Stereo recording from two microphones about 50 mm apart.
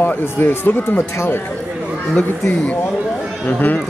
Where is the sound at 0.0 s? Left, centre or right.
Left.